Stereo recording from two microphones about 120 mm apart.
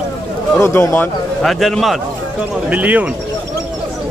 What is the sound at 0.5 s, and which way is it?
Speech, 20° left (ahead or behind).